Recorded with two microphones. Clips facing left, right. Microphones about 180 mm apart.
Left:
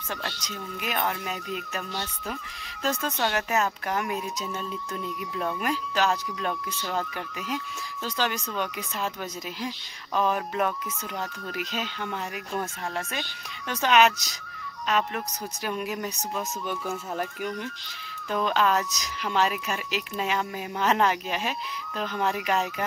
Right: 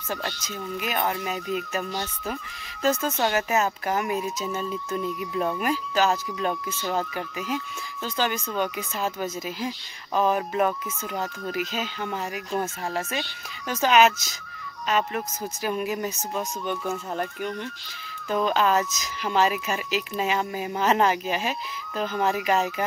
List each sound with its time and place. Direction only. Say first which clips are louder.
0.1 s speech: right 3 dB; 5° right (ahead or behind)